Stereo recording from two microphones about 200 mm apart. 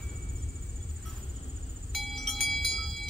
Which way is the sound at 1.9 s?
Centre (ahead or behind).